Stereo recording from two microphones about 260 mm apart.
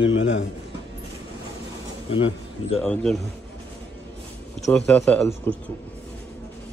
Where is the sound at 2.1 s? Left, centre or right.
Left.